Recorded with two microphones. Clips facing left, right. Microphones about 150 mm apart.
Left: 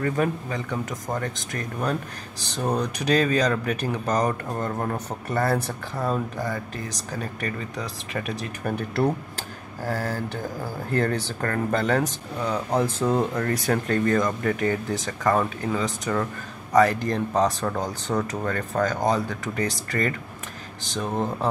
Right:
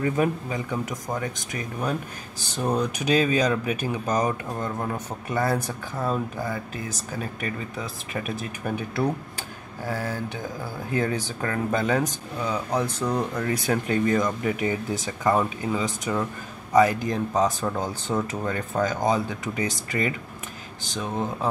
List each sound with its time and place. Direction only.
0.0 s speech: 10° right (ahead or behind)
10.9 s speech: 5° right (ahead or behind)
12.8 s speech: 25° left (ahead or behind)
13.4 s speech: 5° right (ahead or behind)